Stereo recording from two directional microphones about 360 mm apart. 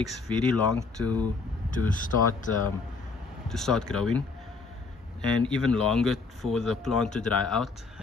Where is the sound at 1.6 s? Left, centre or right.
Left.